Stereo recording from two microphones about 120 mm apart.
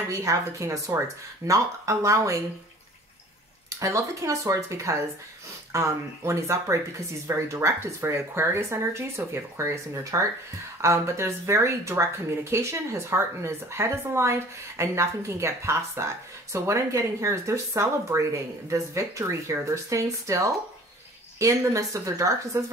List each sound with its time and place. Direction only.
0.1 s speech: 25° right (ahead or behind)
3.8 s speech: 25° right (ahead or behind)